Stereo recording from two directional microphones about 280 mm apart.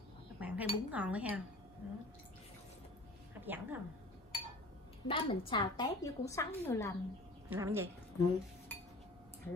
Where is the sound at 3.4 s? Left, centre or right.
Centre.